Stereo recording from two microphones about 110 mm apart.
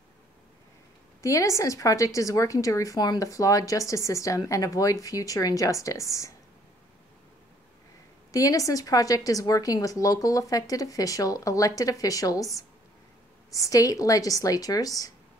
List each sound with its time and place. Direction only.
1.2 s a woman's voice: 30° left (ahead or behind)
8.3 s a woman's voice: 30° left (ahead or behind)